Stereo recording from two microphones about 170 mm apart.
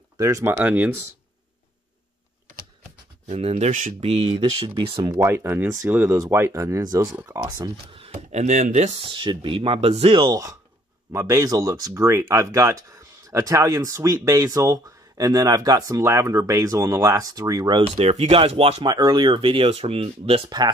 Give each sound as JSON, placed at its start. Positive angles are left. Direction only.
{"t": 0.2, "sound": "speech", "side_deg": -15}
{"t": 3.3, "sound": "speech", "side_deg": -40}
{"t": 7.9, "sound": "speech", "side_deg": -35}